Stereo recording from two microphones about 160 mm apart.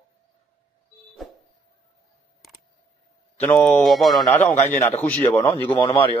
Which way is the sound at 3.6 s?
Centre (ahead or behind).